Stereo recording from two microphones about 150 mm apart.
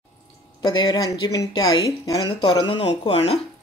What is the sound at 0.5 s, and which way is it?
Speech, 30° left (ahead or behind).